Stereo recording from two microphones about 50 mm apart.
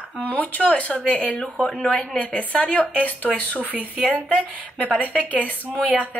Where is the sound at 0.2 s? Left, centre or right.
Left.